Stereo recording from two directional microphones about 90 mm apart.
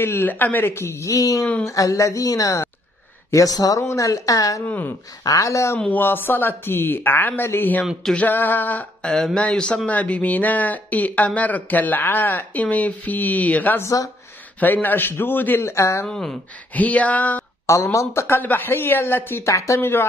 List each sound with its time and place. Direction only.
0.0 s speech: 25° left (ahead or behind)
4.6 s speech: 20° left (ahead or behind)
5.2 s speech: 40° left (ahead or behind)
5.8 s speech: 20° left (ahead or behind)
7.8 s a sound: centre (ahead or behind)
8.1 s speech: 20° left (ahead or behind)
13.8 s speech: 40° left (ahead or behind)
14.6 s speech: 20° left (ahead or behind)
16.1 s speech: 10° left (ahead or behind)
17.9 s speech: 30° left (ahead or behind)